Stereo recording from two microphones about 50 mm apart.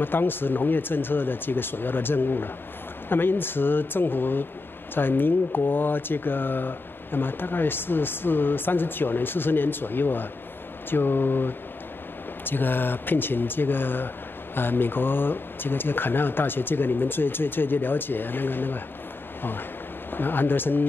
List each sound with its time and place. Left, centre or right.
0.0 s speech: left
20.1 s speech: left